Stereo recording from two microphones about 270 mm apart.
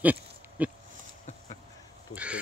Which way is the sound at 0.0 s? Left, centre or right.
Centre.